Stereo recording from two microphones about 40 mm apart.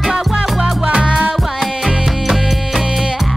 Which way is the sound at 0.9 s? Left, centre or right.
Right.